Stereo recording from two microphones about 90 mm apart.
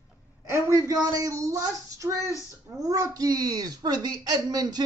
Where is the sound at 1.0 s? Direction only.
45° right (ahead or behind).